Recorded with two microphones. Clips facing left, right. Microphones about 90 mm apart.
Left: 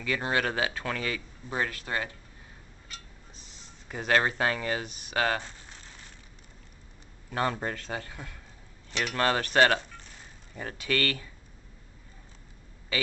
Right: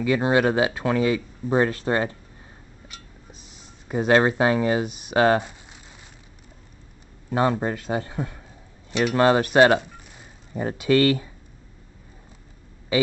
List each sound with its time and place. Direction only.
0.0 s speech: 20° right (ahead or behind)
1.5 s speech: 30° right (ahead or behind)
3.3 s speech: 15° right (ahead or behind)
5.4 s a sound: 15° right (ahead or behind)
7.2 s speech: 15° right (ahead or behind)
9.1 s cutlery: 20° right (ahead or behind)
10.5 s speech: 20° right (ahead or behind)